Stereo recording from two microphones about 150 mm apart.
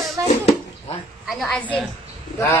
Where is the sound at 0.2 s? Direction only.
20° right (ahead or behind).